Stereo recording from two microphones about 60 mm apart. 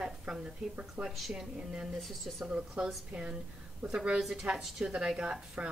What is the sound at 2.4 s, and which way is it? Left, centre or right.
A woman's voice, centre.